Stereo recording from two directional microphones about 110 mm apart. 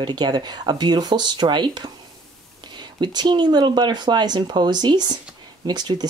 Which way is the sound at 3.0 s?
40° right (ahead or behind).